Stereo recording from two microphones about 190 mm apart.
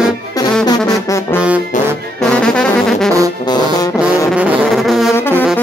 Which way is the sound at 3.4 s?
20° left (ahead or behind).